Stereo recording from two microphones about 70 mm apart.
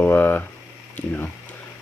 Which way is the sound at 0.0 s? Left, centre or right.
Left.